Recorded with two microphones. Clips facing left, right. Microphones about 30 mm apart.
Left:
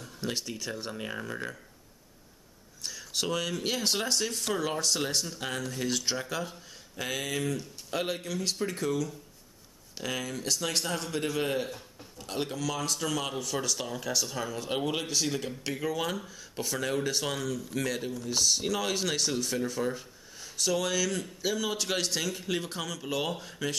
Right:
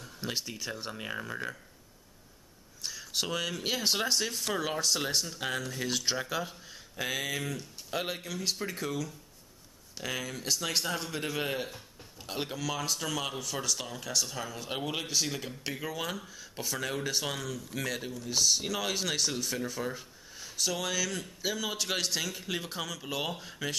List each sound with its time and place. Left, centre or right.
0.0 s speech: centre
2.8 s speech: centre